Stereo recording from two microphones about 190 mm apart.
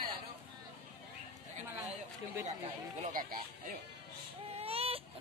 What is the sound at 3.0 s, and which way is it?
Speech, 50° right (ahead or behind).